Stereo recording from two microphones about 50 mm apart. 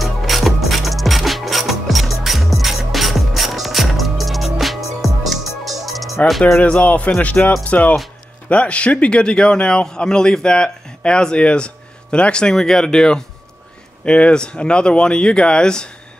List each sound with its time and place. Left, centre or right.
0.0 s music: centre
6.6 s a man's voice: left